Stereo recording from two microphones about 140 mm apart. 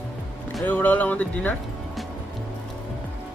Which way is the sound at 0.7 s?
10° left (ahead or behind).